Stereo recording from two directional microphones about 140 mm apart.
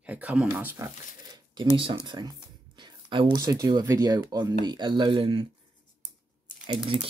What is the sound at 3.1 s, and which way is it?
Speech, 30° right (ahead or behind).